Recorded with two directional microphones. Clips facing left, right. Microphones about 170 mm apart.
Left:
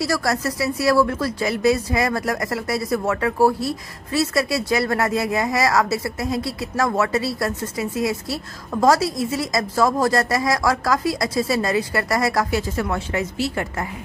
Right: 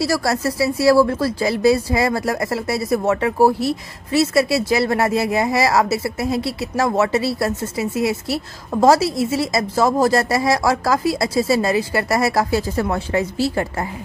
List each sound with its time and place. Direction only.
0.0 s a woman's voice: 30° right (ahead or behind)